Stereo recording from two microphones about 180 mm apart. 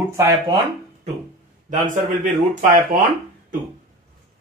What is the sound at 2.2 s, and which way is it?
Speech, 45° right (ahead or behind).